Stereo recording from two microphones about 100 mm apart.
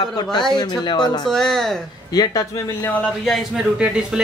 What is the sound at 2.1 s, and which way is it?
Speech, 40° left (ahead or behind).